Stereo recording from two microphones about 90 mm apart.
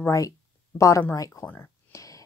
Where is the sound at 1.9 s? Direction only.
40° left (ahead or behind).